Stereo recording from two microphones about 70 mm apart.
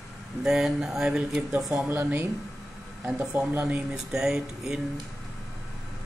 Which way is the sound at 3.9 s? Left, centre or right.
Centre.